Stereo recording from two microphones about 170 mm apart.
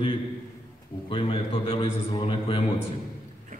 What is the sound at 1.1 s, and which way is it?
A man's voice, 35° left (ahead or behind).